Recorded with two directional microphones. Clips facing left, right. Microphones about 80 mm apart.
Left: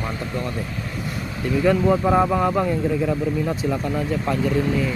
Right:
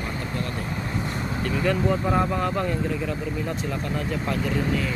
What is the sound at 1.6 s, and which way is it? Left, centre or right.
Speech, centre.